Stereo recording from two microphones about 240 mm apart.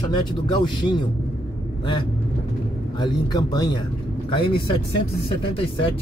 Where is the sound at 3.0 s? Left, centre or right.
Centre.